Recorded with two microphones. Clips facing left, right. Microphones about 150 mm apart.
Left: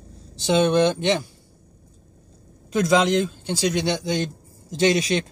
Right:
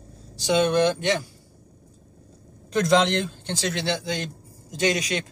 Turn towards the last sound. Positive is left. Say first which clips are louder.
# left 5 dB
turn(degrees=25)  # may be behind; listen again after turning